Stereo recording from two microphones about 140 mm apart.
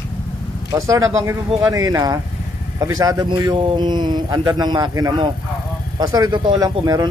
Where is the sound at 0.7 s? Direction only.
20° right (ahead or behind).